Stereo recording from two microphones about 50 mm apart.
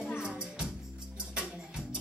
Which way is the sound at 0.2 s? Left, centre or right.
Centre.